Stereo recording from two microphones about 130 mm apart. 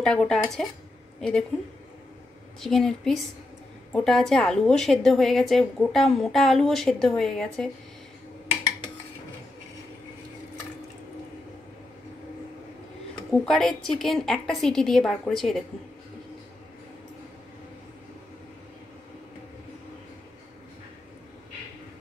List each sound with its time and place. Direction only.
0.0 s a woman's voice: 5° left (ahead or behind)
2.6 s a woman's voice: centre (ahead or behind)
13.3 s a woman's voice: 5° left (ahead or behind)